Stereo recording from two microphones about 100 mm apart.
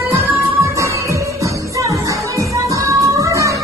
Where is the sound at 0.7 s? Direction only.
30° right (ahead or behind).